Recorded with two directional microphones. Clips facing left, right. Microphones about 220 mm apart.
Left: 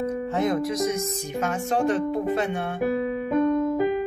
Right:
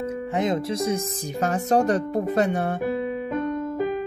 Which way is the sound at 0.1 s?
15° right (ahead or behind).